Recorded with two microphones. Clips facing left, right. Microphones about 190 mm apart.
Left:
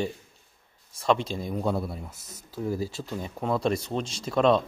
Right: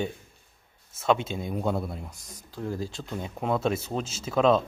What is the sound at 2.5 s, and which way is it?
Speech, 10° left (ahead or behind).